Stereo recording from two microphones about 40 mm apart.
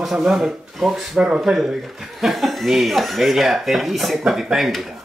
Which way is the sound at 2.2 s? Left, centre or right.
Centre.